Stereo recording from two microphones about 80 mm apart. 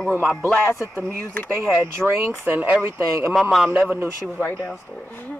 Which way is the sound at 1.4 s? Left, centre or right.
Right.